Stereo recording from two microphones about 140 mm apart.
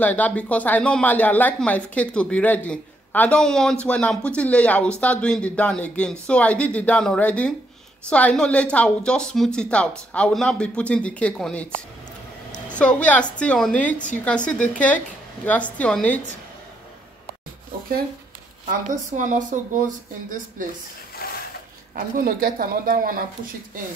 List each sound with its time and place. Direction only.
0.0 s speech: 10° left (ahead or behind)
19.1 s speech: 65° right (ahead or behind)
21.2 s mechanisms: 90° left
21.9 s speech: 85° right